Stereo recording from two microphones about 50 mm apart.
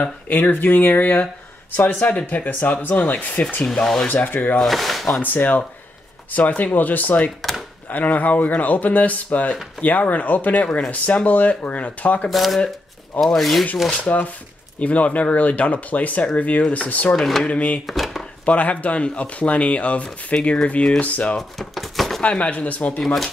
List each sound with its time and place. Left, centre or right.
0.3 s speech: left
3.6 s speech: centre
4.1 s speech: left
4.6 s speech: centre
5.2 s speech: left
12.3 s speech: centre
14.0 s speech: left
17.1 s speech: centre
17.5 s speech: left
17.8 s chopping: centre
18.4 s speech: left
21.4 s speech: centre
22.2 s speech: left
23.0 s speech: centre